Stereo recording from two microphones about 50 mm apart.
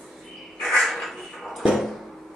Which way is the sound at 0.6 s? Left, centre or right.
Centre.